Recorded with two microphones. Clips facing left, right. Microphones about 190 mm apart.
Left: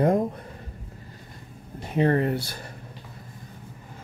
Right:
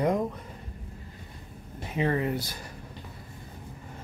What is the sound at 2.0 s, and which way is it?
Speech, 50° left (ahead or behind).